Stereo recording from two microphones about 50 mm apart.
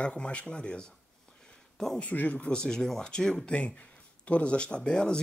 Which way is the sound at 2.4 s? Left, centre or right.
Centre.